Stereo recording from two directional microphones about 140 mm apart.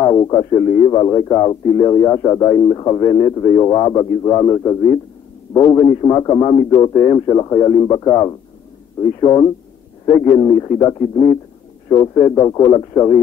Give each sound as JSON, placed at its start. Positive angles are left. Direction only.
{"t": 0.0, "sound": "speech", "side_deg": 30}